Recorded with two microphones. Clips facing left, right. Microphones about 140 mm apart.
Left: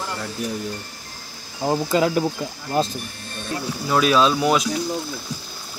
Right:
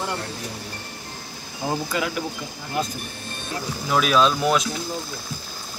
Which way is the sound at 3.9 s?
Centre (ahead or behind).